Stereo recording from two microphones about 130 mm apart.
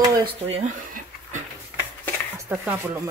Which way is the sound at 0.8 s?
90° right.